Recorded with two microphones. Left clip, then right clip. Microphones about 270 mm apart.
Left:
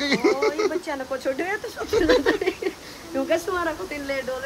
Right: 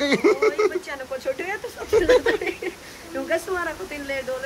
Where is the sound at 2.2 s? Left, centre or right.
Left.